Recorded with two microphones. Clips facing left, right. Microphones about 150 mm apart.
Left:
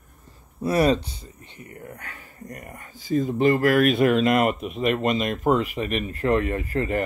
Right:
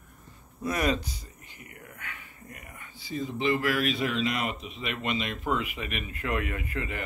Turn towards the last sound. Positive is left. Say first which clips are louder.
# left 10 dB
turn(degrees=40)  # may be behind; listen again after turning